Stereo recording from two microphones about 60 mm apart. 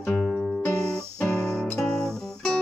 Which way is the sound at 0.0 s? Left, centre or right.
Centre.